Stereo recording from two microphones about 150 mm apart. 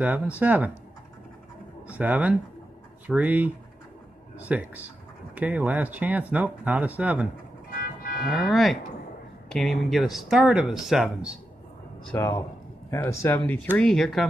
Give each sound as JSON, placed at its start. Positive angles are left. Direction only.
{"t": 0.0, "sound": "speech", "side_deg": -10}
{"t": 1.9, "sound": "speech", "side_deg": -10}
{"t": 7.7, "sound": "music", "side_deg": 75}
{"t": 8.3, "sound": "speech", "side_deg": 0}
{"t": 12.1, "sound": "speech", "side_deg": 15}
{"t": 13.7, "sound": "speech", "side_deg": 5}